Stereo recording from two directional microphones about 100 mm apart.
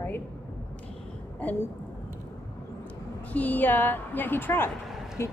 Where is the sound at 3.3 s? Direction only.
15° left (ahead or behind).